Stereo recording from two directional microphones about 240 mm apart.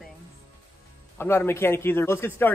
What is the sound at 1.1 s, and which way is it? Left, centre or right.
Speech, centre.